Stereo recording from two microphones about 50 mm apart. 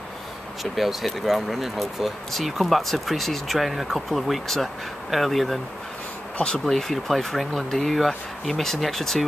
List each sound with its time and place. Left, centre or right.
0.7 s speech: centre
6.3 s speech: left
6.6 s speech: centre